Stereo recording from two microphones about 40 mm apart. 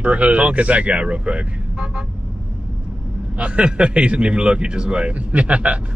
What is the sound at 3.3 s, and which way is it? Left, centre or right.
A man's voice, right.